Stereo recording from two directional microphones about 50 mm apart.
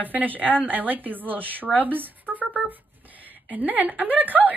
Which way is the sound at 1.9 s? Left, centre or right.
Right.